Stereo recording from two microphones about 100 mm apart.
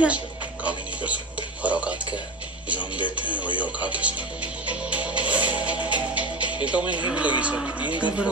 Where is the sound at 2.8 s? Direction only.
55° left (ahead or behind).